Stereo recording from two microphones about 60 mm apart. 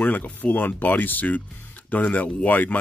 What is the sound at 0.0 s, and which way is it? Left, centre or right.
Speech, left.